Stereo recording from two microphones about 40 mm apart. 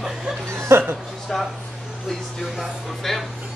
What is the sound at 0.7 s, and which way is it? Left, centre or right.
Speech, right.